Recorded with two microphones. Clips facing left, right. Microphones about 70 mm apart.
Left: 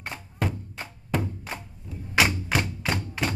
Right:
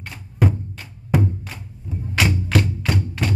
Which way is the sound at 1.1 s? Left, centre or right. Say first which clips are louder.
Right 7 dB; centre.